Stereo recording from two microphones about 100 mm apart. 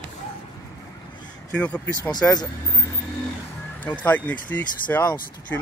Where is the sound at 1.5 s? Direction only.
15° left (ahead or behind).